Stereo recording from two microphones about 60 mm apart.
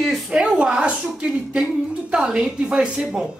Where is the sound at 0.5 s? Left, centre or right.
Centre.